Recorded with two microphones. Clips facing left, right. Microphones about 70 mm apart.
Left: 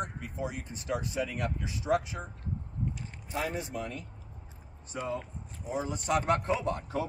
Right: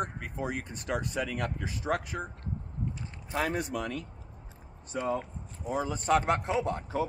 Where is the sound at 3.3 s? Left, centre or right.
Right.